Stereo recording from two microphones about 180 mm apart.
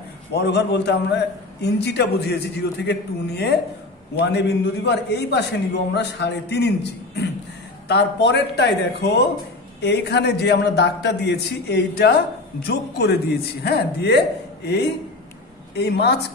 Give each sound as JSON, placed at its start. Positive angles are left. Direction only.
{"t": 0.3, "sound": "a man's voice", "side_deg": 65}
{"t": 15.7, "sound": "a man's voice", "side_deg": 70}